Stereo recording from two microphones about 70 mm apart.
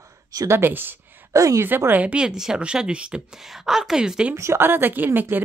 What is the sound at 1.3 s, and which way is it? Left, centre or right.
Speech, right.